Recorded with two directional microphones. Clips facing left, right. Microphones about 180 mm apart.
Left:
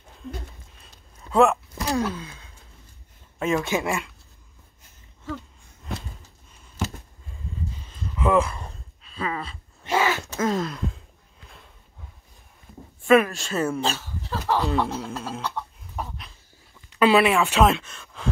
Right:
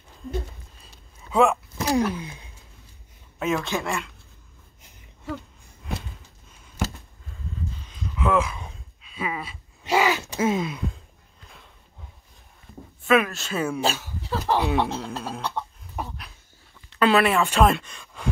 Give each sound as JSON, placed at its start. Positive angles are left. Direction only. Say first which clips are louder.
{"t": 1.3, "sound": "a sound", "louder": "left 1 dB", "side_deg": 0}
{"t": 2.0, "sound": "a sound", "louder": "right 3 dB", "side_deg": -15}
{"t": 3.3, "sound": "speech", "louder": "left 1 dB", "side_deg": -5}
{"t": 3.6, "sound": "speech", "louder": "left 3 dB", "side_deg": 15}
{"t": 7.7, "sound": "a sound", "louder": "even", "side_deg": 10}
{"t": 10.5, "sound": "speech", "louder": "even", "side_deg": 0}
{"t": 13.0, "sound": "speech", "louder": "left 3 dB", "side_deg": 10}
{"t": 13.3, "sound": "speech", "louder": "left 1 dB", "side_deg": -5}
{"t": 14.6, "sound": "speech", "louder": "right 1 dB", "side_deg": 0}
{"t": 17.0, "sound": "speech", "louder": "left 1 dB", "side_deg": 5}